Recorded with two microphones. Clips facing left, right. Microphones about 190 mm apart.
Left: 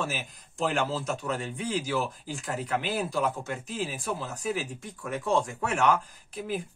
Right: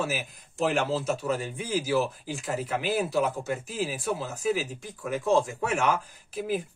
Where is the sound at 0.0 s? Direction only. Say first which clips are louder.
Right 3 dB; 5° right (ahead or behind).